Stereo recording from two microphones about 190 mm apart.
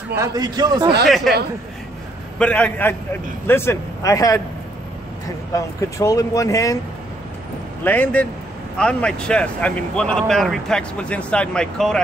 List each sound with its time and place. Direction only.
0.1 s a man's voice: 15° right (ahead or behind)
1.0 s speech: centre (ahead or behind)
2.3 s speech: 5° left (ahead or behind)
5.5 s speech: 15° left (ahead or behind)
7.8 s speech: 10° left (ahead or behind)